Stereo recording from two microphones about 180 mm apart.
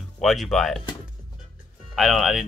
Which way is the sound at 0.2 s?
Centre (ahead or behind).